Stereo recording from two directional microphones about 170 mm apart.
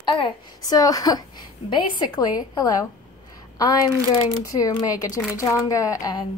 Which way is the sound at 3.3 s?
20° left (ahead or behind).